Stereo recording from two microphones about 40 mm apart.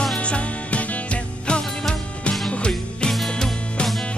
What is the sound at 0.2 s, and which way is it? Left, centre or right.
Music, left.